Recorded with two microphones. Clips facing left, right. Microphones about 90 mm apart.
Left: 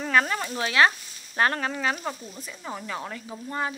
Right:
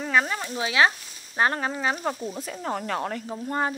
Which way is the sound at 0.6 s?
15° right (ahead or behind).